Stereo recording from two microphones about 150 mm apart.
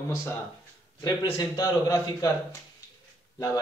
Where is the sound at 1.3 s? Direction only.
25° left (ahead or behind).